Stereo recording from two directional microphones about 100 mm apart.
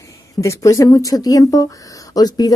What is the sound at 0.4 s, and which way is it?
Speech, 30° left (ahead or behind).